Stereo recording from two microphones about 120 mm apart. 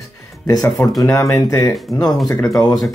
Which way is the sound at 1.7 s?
Centre (ahead or behind).